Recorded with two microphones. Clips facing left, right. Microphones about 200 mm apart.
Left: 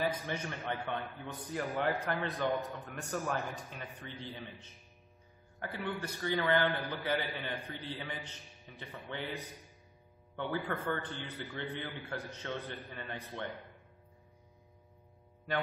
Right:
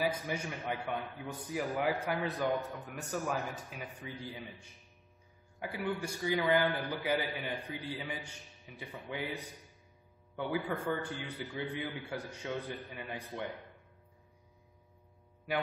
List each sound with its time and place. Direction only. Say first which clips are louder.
0.0 s a man's voice: right 1 dB; 10° right (ahead or behind)